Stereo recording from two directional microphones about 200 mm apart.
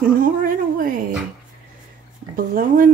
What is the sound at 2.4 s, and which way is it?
Speech, 45° right (ahead or behind).